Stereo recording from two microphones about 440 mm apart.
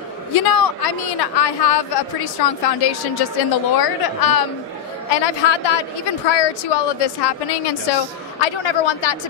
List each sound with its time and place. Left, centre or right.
0.5 s a woman's voice: left
5.1 s a woman's voice: left
8.4 s speech: left